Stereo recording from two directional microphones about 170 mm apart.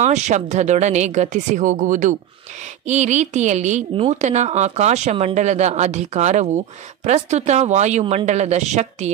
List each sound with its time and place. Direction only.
0.0 s a woman's voice: 45° right (ahead or behind)